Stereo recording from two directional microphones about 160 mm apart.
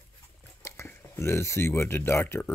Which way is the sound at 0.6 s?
15° left (ahead or behind).